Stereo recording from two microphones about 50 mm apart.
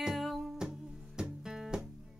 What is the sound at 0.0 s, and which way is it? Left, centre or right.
Music, centre.